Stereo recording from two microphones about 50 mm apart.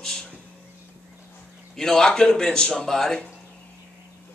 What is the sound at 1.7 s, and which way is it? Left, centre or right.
A man's voice, centre.